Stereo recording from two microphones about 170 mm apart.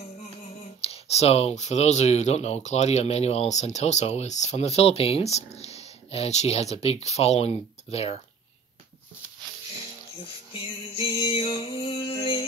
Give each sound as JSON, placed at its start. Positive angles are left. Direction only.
{"t": 0.7, "sound": "speech", "side_deg": 35}
{"t": 10.5, "sound": "music", "side_deg": 30}